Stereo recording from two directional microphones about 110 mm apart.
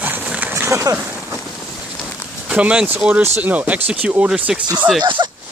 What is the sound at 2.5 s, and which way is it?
Speech, 10° right (ahead or behind).